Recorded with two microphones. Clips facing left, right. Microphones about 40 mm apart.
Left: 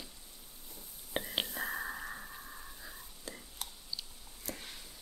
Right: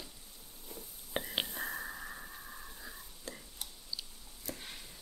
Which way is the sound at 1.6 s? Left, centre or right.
Centre.